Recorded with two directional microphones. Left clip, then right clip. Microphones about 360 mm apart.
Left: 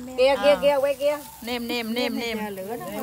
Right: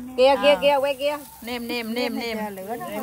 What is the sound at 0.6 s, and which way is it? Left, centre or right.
Speech, right.